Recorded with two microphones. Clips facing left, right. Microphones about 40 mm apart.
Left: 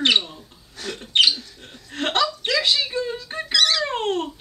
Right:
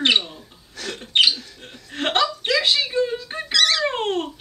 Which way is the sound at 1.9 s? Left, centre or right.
Right.